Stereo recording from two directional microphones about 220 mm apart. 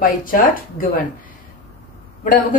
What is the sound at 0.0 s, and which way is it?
Speech, 40° left (ahead or behind).